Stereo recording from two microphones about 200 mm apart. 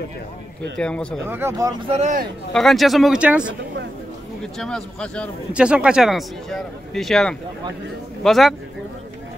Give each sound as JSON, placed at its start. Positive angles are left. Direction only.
{"t": 0.7, "sound": "a man's voice", "side_deg": 5}
{"t": 1.2, "sound": "speech", "side_deg": -10}
{"t": 1.9, "sound": "speech", "side_deg": -35}
{"t": 2.5, "sound": "a man's voice", "side_deg": 0}
{"t": 4.6, "sound": "a man's voice", "side_deg": 5}
{"t": 5.5, "sound": "a man's voice", "side_deg": -5}